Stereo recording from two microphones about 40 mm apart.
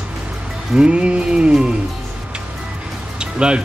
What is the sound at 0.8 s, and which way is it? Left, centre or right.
Music, right.